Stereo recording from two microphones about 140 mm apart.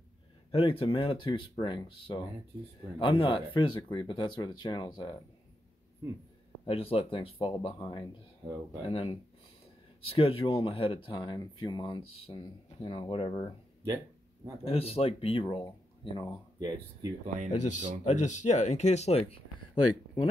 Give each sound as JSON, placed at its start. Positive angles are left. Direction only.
{"t": 0.5, "sound": "speech", "side_deg": 40}
{"t": 6.6, "sound": "speech", "side_deg": 40}
{"t": 14.6, "sound": "speech", "side_deg": 45}
{"t": 16.5, "sound": "speech", "side_deg": -25}
{"t": 17.6, "sound": "speech", "side_deg": 60}